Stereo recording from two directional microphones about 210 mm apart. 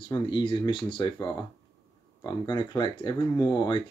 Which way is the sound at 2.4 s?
20° left (ahead or behind).